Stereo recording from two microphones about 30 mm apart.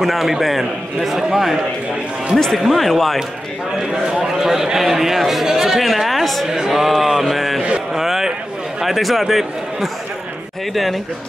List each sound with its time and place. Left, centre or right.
0.0 s a man's voice: centre
2.3 s speech: centre
2.6 s speech: centre
3.9 s a man's voice: right
5.8 s speech: centre
6.4 s a man's voice: centre